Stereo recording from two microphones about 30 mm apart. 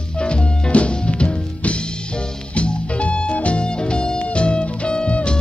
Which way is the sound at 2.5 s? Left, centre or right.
Left.